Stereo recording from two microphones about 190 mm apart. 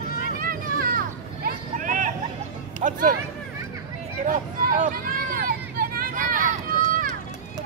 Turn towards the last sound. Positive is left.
turn(degrees=-45)  # may be behind; listen again after turning